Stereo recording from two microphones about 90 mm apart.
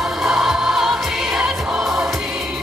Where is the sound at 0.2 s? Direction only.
5° right (ahead or behind).